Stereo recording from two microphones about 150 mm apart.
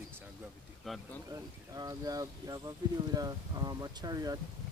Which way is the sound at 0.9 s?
Centre (ahead or behind).